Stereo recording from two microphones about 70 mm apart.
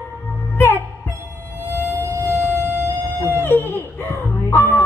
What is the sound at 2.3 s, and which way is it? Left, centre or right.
Music, right.